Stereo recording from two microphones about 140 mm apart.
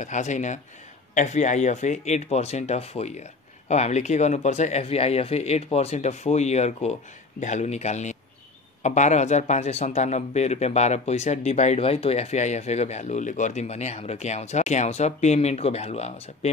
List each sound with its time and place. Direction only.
0.0 s speech: 60° left (ahead or behind)